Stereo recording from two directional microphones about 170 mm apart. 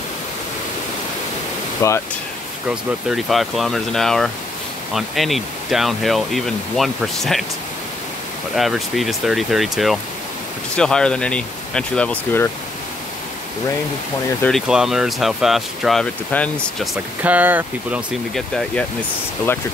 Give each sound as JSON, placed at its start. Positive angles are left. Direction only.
{"t": 1.8, "sound": "speech", "side_deg": 20}
{"t": 2.7, "sound": "speech", "side_deg": 0}
{"t": 8.5, "sound": "speech", "side_deg": 0}
{"t": 14.7, "sound": "speech", "side_deg": -5}
{"t": 18.3, "sound": "speech", "side_deg": 5}